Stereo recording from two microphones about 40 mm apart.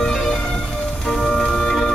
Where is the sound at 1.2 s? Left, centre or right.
Left.